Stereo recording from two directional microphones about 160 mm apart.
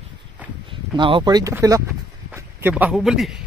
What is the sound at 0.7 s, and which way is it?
Speech, 30° right (ahead or behind).